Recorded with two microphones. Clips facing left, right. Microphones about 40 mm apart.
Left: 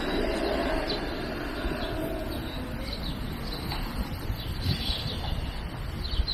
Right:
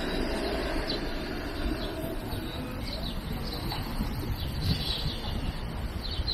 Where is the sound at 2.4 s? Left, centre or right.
Centre.